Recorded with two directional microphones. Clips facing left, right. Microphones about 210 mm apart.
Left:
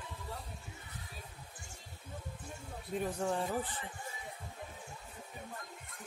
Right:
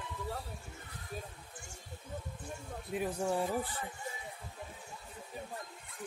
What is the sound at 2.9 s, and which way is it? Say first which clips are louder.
Speech: right 1 dB; 10° right (ahead or behind).